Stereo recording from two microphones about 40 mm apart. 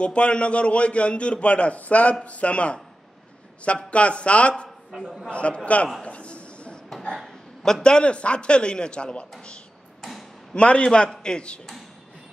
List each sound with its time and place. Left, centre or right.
0.0 s a man's voice: left
6.0 s a sound: left
7.6 s speech: centre
10.5 s speech: left